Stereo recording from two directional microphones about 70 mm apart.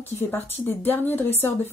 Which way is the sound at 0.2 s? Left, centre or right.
Left.